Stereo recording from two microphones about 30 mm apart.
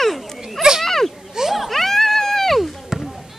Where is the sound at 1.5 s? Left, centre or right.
Centre.